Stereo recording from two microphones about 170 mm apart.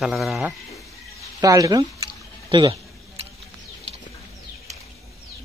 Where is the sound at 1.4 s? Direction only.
20° right (ahead or behind).